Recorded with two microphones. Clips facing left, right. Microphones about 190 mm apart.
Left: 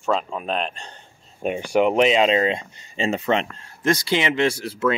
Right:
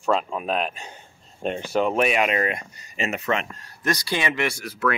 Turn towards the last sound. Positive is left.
turn(degrees=25)  # may be behind; listen again after turning